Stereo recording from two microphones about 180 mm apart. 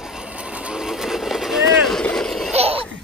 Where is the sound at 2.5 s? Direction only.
35° right (ahead or behind).